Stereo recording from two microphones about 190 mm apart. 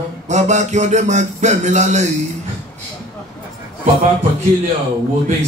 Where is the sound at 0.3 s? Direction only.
40° right (ahead or behind).